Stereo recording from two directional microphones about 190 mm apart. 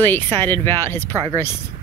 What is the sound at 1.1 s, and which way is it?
Speech, 20° right (ahead or behind).